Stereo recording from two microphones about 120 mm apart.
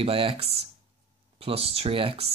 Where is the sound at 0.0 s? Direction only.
50° right (ahead or behind).